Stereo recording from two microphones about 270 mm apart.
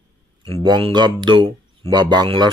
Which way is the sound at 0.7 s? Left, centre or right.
Centre.